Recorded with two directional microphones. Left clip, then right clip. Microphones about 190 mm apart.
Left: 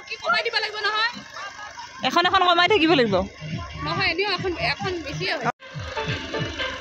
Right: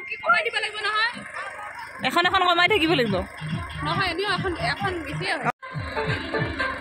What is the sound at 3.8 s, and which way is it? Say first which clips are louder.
Speech: left 1 dB; 20° left (ahead or behind).